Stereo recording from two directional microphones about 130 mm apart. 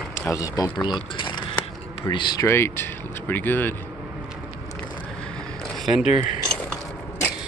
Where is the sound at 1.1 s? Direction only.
35° left (ahead or behind).